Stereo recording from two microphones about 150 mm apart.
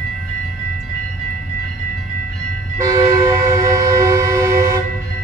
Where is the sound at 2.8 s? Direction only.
20° right (ahead or behind).